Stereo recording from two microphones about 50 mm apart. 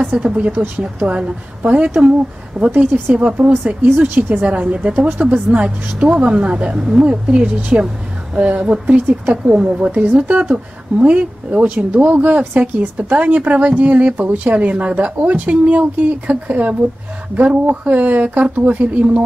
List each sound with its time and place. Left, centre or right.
0.2 s speech: right
5.2 s speech: right
7.1 s speech: right